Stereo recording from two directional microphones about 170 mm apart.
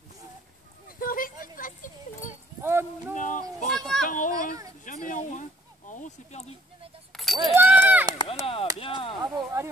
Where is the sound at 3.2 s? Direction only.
50° left (ahead or behind).